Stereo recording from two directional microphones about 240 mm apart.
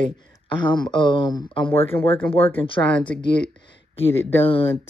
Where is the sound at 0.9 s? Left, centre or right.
Centre.